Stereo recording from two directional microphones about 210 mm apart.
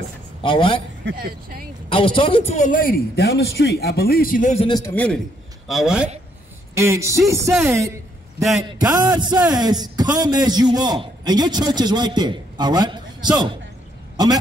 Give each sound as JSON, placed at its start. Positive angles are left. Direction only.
{"t": 0.4, "sound": "speech", "side_deg": 25}
{"t": 1.0, "sound": "speech", "side_deg": -45}
{"t": 1.9, "sound": "a man's voice", "side_deg": 25}
{"t": 4.6, "sound": "a man's voice", "side_deg": 20}
{"t": 4.9, "sound": "a man's voice", "side_deg": 5}
{"t": 6.7, "sound": "speech", "side_deg": -15}
{"t": 8.4, "sound": "a man's voice", "side_deg": 0}
{"t": 8.6, "sound": "a man's voice", "side_deg": -20}